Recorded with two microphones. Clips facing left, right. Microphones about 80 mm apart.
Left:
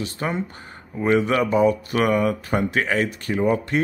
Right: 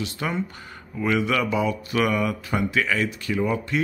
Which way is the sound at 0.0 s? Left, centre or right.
Left.